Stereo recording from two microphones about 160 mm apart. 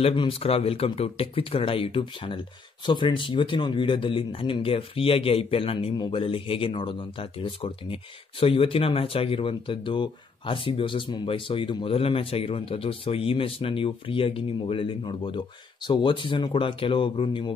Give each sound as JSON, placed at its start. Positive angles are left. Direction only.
{"t": 0.0, "sound": "speech", "side_deg": 35}